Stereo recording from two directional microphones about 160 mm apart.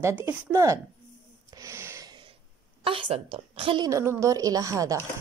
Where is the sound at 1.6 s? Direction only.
15° right (ahead or behind).